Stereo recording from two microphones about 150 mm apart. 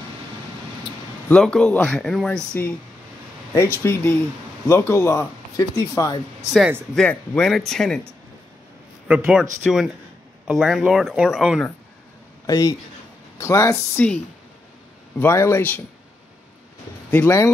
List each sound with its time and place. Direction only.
1.3 s speech: 5° left (ahead or behind)
3.7 s speech: 15° left (ahead or behind)
7.0 s speech: 5° left (ahead or behind)
9.0 s speech: 10° right (ahead or behind)
12.4 s speech: 25° left (ahead or behind)
15.1 s speech: 15° left (ahead or behind)
17.1 s speech: 10° left (ahead or behind)